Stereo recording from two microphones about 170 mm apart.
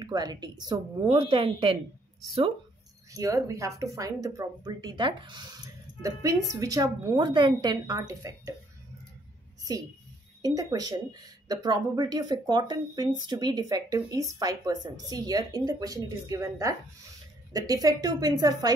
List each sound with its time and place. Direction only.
0.0 s speech: 25° right (ahead or behind)
3.1 s speech: 20° right (ahead or behind)
10.4 s speech: 20° right (ahead or behind)